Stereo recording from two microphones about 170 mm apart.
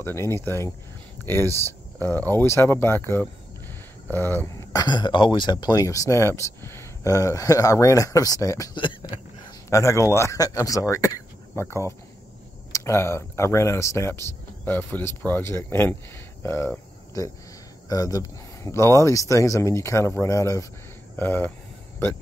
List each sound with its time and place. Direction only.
0.0 s speech: 15° left (ahead or behind)
1.5 s speech: 20° right (ahead or behind)
2.0 s speech: 10° left (ahead or behind)